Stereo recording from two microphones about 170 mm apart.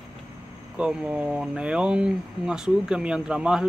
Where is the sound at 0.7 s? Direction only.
5° right (ahead or behind).